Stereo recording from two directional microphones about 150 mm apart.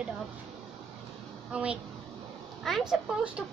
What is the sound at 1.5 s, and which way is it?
A woman's voice, 5° right (ahead or behind).